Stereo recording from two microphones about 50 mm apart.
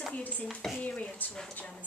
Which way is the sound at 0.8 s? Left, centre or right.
Left.